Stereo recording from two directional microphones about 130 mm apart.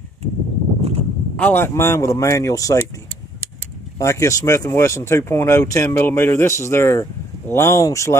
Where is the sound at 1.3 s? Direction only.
15° left (ahead or behind).